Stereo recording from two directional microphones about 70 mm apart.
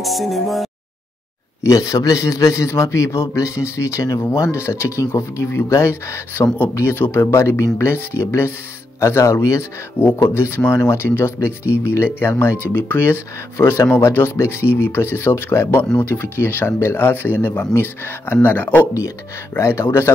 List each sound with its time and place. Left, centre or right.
0.0 s music: centre
1.6 s a man's voice: left
19.5 s speech: left